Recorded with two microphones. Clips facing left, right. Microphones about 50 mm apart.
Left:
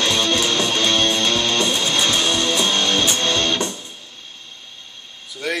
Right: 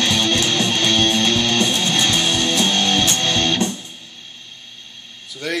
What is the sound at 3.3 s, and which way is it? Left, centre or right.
Music, right.